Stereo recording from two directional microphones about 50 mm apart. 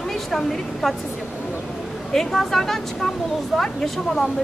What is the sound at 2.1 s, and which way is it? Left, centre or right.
A woman's voice, centre.